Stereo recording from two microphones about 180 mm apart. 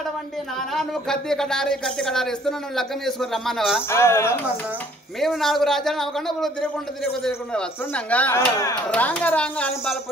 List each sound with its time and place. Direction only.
0.7 s speech: 5° left (ahead or behind)
3.9 s speech: 15° left (ahead or behind)
5.2 s speech: centre (ahead or behind)